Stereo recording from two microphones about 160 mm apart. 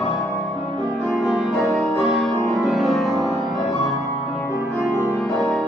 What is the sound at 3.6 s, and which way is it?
Music, 40° left (ahead or behind).